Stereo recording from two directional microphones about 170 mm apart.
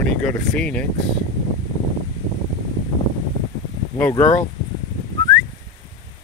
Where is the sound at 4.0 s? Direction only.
15° left (ahead or behind).